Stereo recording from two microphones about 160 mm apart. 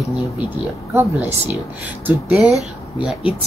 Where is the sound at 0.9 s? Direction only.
15° right (ahead or behind).